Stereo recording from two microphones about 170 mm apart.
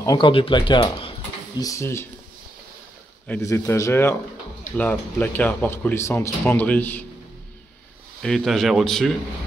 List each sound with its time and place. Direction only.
0.0 s speech: 20° left (ahead or behind)
0.3 s speech: 30° left (ahead or behind)
1.6 s speech: 15° left (ahead or behind)
3.3 s speech: 15° left (ahead or behind)
8.2 s speech: 5° left (ahead or behind)